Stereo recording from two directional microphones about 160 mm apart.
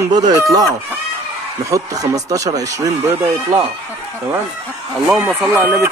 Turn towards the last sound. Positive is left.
turn(degrees=-15)  # may be behind; listen again after turning